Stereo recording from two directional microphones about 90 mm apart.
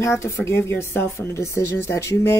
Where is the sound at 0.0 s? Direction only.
35° left (ahead or behind).